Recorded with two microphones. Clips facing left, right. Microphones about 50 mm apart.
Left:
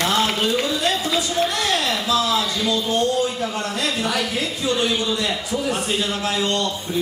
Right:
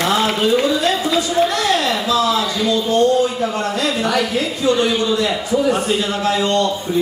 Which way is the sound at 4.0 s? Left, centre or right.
Centre.